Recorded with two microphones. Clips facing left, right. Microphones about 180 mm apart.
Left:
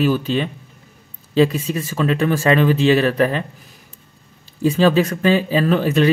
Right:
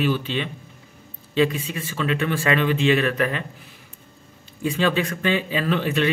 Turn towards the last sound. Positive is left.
turn(degrees=40)  # may be behind; listen again after turning